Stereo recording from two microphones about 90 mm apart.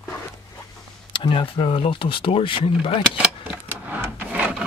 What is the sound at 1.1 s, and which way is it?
Speech, 65° left (ahead or behind).